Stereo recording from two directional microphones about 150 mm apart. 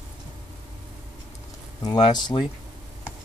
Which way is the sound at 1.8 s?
30° left (ahead or behind).